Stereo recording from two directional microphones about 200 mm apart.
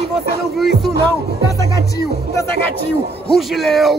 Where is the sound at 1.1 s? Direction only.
15° left (ahead or behind).